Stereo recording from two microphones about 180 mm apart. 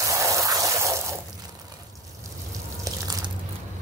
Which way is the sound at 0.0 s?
15° right (ahead or behind).